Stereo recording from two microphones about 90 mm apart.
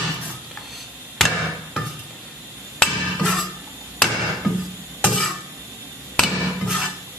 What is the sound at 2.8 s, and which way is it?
Hammer, 5° left (ahead or behind).